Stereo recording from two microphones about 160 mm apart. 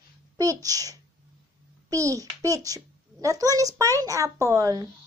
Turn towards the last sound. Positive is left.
turn(degrees=-20)  # may be behind; listen again after turning